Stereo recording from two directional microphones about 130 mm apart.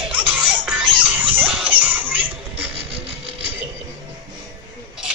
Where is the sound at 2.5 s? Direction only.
50° right (ahead or behind).